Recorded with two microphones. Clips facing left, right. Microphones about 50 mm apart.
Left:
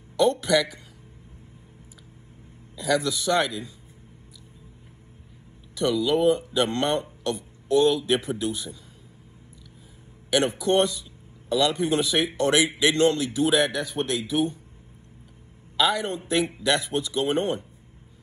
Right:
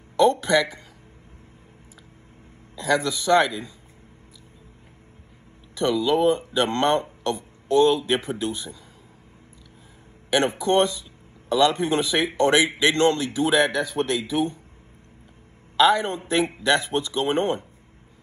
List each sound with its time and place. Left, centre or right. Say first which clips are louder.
0.2 s speech: right 2 dB; right
2.8 s speech: right 1 dB; right
3.3 s a man's voice: right 7 dB; centre
5.8 s speech: right 2 dB; right
10.3 s speech: right 1 dB; right
15.8 s a man's voice: right 5 dB; right